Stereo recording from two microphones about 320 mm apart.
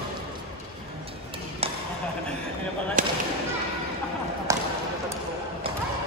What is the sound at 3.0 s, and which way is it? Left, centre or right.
Basketball bounce, right.